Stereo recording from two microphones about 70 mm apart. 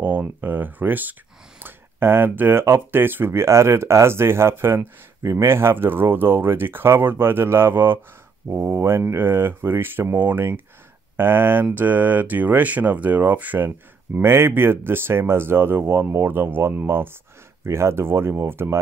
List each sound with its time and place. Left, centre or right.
0.0 s speech: right
13.7 s speech: right